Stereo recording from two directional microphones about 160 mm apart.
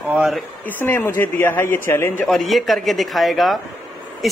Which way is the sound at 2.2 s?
Centre (ahead or behind).